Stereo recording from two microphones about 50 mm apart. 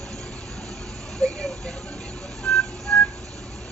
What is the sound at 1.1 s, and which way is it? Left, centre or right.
Speech, centre.